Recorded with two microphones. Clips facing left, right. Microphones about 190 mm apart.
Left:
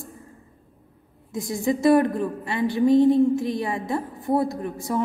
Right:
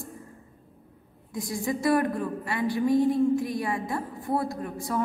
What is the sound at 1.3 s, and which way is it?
A woman's voice, 25° left (ahead or behind).